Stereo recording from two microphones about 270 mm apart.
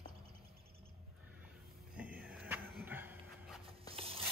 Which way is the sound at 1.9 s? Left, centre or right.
Centre.